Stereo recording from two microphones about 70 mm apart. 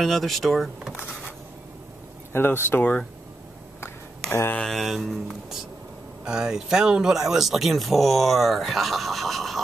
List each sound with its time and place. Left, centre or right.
0.0 s speech: centre
2.3 s speech: left
4.3 s speech: left
4.6 s speech: centre